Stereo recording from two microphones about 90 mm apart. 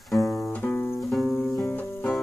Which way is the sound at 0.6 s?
20° left (ahead or behind).